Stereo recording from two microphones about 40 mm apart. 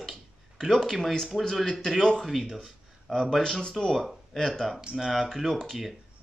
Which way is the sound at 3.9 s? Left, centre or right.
Centre.